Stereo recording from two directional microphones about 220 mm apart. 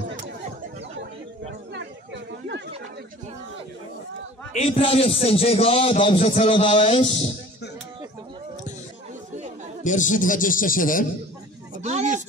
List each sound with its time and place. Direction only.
1.7 s chatter: 55° right (ahead or behind)
4.6 s a man's voice: 25° left (ahead or behind)
9.8 s a man's voice: 35° left (ahead or behind)
11.7 s a sound: 30° right (ahead or behind)